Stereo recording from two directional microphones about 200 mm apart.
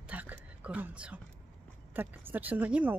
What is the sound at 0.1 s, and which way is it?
A woman's voice, 10° right (ahead or behind).